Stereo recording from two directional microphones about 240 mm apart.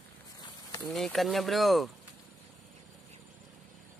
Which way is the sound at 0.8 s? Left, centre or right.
Centre.